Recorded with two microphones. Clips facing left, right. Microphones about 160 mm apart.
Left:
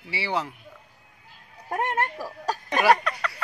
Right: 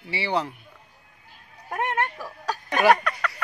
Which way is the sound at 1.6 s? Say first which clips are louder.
Even; 35° left (ahead or behind).